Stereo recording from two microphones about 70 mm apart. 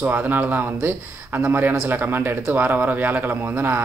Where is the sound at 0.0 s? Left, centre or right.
Right.